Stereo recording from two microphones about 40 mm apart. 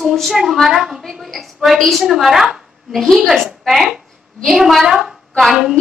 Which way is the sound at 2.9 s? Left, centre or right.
Centre.